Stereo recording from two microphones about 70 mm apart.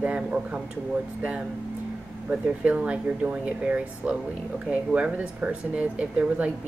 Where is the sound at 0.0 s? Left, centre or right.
Centre.